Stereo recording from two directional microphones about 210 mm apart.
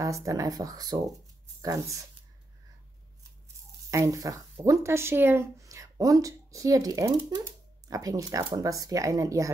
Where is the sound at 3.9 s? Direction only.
15° right (ahead or behind).